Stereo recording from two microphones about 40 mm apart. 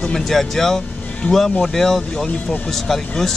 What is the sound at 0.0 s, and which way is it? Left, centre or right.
Speech, centre.